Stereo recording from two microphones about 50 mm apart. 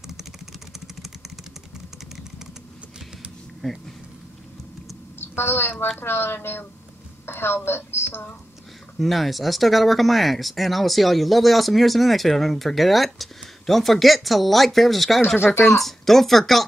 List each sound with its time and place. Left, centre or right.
0.2 s vehicle: centre
3.6 s speech: centre
5.2 s a woman's voice: left
9.0 s speech: centre
15.3 s a woman's voice: left
15.8 s speech: centre